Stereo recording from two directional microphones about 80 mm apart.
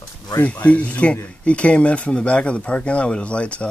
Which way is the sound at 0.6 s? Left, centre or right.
Centre.